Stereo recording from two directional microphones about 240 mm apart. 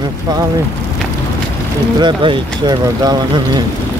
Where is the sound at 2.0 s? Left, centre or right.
Centre.